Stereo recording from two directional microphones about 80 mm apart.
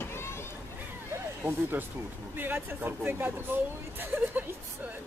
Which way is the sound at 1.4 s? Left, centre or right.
Right.